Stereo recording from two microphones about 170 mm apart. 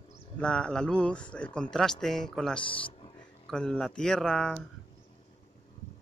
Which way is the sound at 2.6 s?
30° left (ahead or behind).